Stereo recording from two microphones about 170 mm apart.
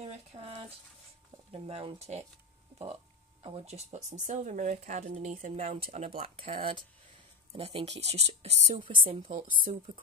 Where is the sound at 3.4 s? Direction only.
35° right (ahead or behind).